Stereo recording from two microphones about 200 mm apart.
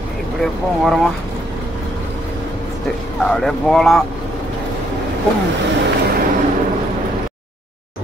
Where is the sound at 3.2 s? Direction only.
5° left (ahead or behind).